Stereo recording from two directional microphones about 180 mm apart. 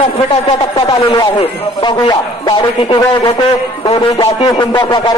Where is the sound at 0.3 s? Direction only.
25° left (ahead or behind).